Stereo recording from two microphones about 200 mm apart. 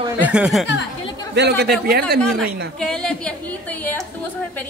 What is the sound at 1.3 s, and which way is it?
Speech, 55° right (ahead or behind).